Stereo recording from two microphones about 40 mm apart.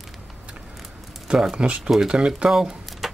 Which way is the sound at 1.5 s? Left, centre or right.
Right.